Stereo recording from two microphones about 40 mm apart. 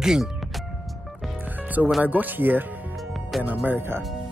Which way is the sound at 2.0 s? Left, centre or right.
Right.